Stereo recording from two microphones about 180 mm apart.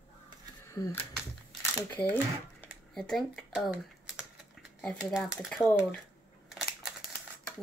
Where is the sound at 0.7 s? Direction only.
15° left (ahead or behind).